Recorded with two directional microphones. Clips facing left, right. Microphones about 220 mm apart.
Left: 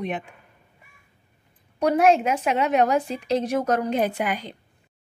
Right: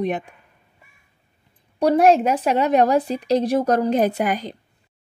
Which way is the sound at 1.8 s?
35° right (ahead or behind).